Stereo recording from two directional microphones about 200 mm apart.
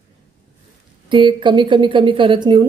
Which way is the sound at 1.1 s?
25° right (ahead or behind).